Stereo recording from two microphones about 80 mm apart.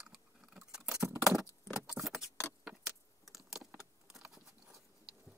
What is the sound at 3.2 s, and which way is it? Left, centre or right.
Computer keyboard, centre.